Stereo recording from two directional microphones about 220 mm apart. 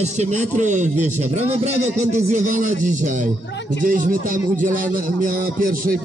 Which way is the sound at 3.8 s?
40° right (ahead or behind).